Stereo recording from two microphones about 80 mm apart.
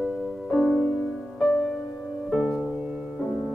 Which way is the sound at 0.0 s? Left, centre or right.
Centre.